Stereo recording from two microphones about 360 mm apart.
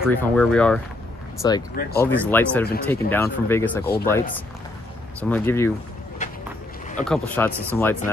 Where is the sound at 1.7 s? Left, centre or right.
Left.